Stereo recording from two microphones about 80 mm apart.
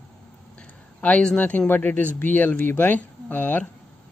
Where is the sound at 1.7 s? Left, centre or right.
Centre.